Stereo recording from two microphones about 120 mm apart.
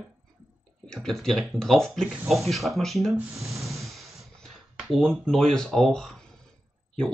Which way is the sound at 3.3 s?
25° right (ahead or behind).